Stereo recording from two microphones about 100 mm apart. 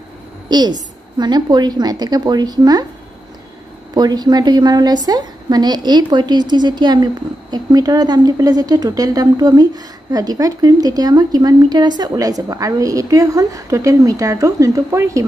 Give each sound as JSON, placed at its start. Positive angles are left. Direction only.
{"t": 0.5, "sound": "a woman's voice", "side_deg": -45}
{"t": 3.9, "sound": "a woman's voice", "side_deg": -45}